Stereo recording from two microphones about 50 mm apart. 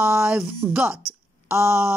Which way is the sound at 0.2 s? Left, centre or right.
Centre.